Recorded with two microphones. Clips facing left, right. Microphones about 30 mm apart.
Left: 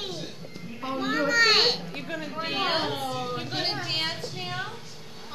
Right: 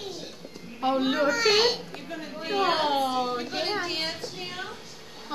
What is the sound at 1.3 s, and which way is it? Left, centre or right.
A child's voice, left.